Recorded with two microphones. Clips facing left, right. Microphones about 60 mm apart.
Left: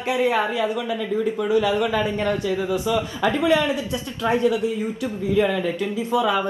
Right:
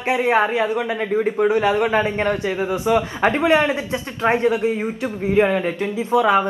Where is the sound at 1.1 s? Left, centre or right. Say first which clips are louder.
Right 6 dB; right.